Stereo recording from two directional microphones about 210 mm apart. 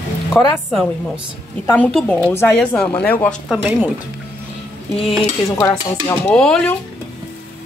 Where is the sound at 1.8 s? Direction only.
Centre (ahead or behind).